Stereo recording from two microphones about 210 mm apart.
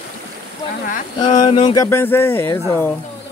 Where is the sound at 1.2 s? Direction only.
20° left (ahead or behind).